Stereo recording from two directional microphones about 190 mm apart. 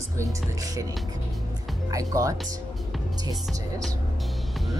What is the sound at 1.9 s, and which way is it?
Speech, 20° right (ahead or behind).